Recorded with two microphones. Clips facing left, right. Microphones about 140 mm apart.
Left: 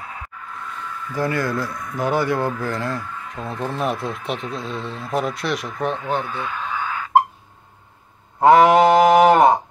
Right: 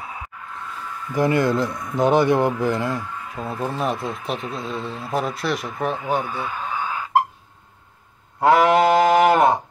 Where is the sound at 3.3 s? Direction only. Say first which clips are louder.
Even; 5° right (ahead or behind).